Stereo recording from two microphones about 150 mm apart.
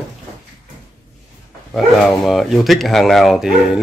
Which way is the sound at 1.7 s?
Centre (ahead or behind).